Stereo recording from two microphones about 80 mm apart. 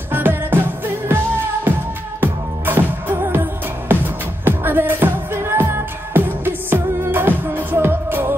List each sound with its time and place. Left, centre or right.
0.1 s music: right